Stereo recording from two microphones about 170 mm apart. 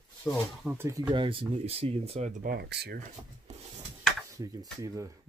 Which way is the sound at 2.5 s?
70° right (ahead or behind).